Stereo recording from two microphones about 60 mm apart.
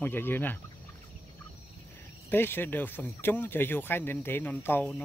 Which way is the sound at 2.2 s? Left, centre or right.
Left.